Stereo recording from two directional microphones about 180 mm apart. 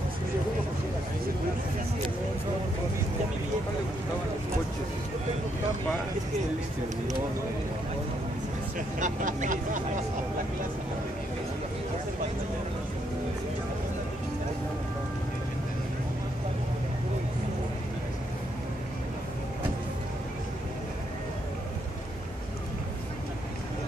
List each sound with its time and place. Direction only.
8.7 s vehicle: 45° right (ahead or behind)